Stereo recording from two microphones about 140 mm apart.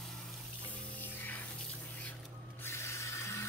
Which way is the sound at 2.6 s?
20° left (ahead or behind).